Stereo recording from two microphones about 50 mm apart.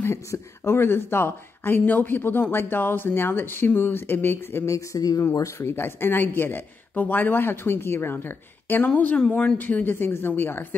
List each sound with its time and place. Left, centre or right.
0.0 s speech: left
1.9 s speech: left
5.2 s speech: left
5.7 s speech: left